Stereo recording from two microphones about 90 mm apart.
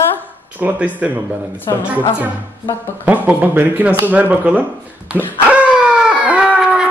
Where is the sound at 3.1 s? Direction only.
20° right (ahead or behind).